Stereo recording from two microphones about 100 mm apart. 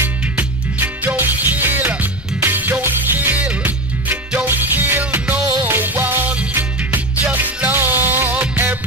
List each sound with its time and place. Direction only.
0.0 s music: 20° right (ahead or behind)